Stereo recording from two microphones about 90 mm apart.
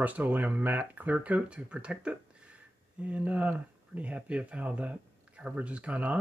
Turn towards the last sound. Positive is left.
turn(degrees=-15)  # may be behind; listen again after turning